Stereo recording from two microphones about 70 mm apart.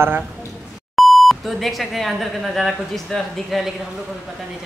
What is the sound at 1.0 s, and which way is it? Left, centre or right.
Speech, centre.